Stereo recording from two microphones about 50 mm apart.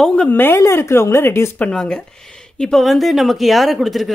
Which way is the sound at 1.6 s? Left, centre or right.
Centre.